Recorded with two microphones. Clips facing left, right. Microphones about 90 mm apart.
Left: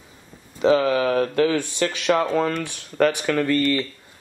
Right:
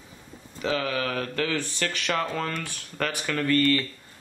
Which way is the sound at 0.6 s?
30° left (ahead or behind).